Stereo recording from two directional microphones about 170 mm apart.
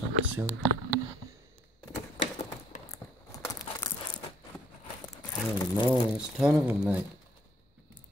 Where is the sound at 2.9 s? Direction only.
20° left (ahead or behind).